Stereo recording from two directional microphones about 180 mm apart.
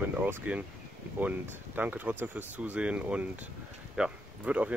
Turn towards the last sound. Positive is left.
turn(degrees=-5)  # may be behind; listen again after turning